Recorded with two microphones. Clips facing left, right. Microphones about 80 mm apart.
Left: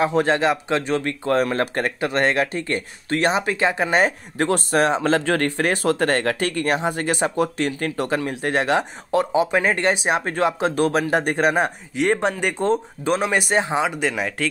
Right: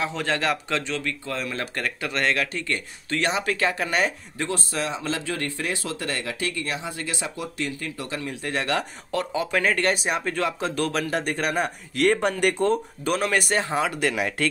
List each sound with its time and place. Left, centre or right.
0.0 s speech: left
4.4 s speech: left
6.8 s speech: left
7.3 s speech: left
8.1 s speech: left
8.6 s speech: left
10.0 s speech: left
12.4 s speech: centre
12.7 s speech: left
13.9 s speech: centre